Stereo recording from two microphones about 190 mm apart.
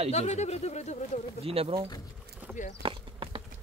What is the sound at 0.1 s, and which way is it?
Speech, 35° left (ahead or behind).